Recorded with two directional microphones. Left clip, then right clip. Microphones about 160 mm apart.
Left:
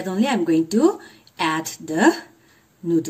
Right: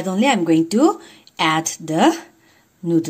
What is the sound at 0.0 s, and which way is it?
Speech, 40° right (ahead or behind).